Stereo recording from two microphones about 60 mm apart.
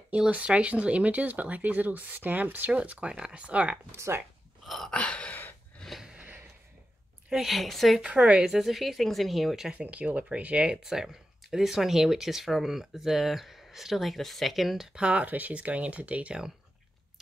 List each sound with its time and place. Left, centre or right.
0.1 s speech: centre
3.9 s speech: right
4.6 s gasp: centre
4.9 s gasp: centre
5.8 s a sound: centre
7.2 s speech: centre
8.0 s speech: centre
9.8 s speech: right; by 15.0 s centre
15.0 s speech: centre
15.2 s speech: right